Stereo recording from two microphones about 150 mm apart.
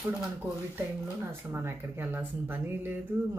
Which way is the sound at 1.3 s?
15° right (ahead or behind).